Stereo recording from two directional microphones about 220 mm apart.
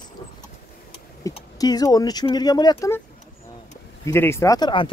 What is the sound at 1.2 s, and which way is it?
Speech, 15° left (ahead or behind).